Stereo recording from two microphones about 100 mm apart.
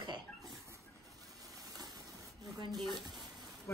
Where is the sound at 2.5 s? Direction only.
45° right (ahead or behind).